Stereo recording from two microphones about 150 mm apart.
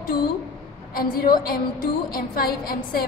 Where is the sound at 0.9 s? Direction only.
75° left (ahead or behind).